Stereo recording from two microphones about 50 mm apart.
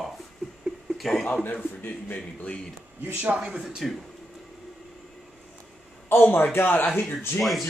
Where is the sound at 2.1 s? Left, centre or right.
Centre.